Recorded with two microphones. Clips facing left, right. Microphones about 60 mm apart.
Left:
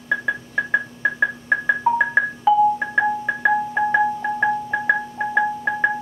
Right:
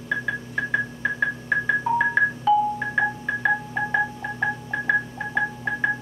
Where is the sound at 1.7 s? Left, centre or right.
Centre.